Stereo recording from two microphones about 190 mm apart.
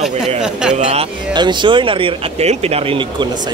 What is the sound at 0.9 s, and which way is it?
Speech, 25° right (ahead or behind).